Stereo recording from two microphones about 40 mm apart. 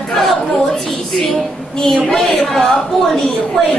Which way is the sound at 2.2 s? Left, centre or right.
Centre.